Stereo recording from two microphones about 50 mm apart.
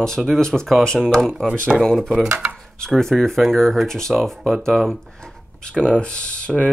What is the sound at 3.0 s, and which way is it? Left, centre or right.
Speech, centre.